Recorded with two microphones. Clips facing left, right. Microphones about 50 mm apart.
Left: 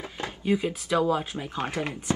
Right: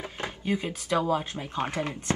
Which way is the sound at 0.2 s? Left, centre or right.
Right.